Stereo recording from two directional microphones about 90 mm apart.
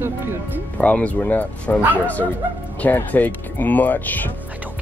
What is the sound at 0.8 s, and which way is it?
Speech, 15° left (ahead or behind).